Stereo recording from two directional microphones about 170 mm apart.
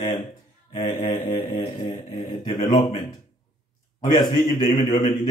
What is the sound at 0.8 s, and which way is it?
Speech, 50° left (ahead or behind).